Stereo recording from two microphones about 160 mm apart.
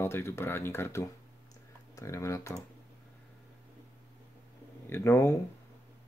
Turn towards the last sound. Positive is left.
turn(degrees=15)  # may be behind; listen again after turning